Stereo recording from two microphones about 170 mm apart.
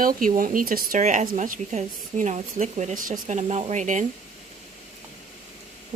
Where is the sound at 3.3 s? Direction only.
40° right (ahead or behind).